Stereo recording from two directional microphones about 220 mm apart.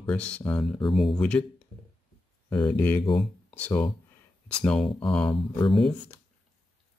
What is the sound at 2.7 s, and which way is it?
Speech, 10° left (ahead or behind).